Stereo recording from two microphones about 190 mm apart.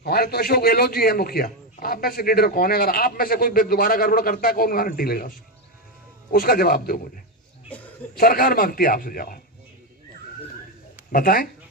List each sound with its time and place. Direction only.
0.0 s a man's voice: 55° left (ahead or behind)
7.7 s a sound: 10° left (ahead or behind)
8.2 s a man's voice: 50° left (ahead or behind)
11.1 s speech: 50° left (ahead or behind)